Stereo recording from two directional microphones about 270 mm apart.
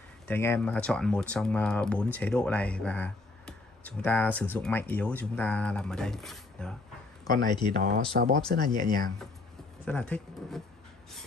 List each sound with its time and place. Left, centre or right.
0.3 s speech: centre
7.2 s speech: centre
7.7 s speech: right
8.5 s speech: centre
9.8 s speech: centre